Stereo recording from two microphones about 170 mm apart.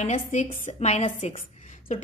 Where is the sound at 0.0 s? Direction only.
45° left (ahead or behind).